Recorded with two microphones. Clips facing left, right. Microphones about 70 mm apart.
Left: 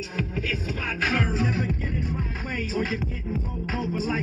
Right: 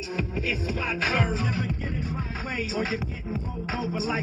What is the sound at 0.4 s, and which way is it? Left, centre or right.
Music, left.